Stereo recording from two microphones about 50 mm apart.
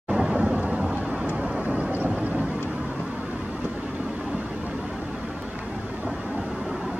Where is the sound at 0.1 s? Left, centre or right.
Centre.